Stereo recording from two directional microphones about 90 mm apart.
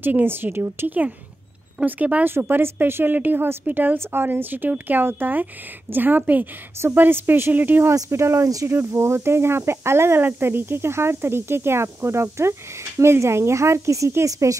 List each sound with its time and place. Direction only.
0.0 s speech: 25° right (ahead or behind)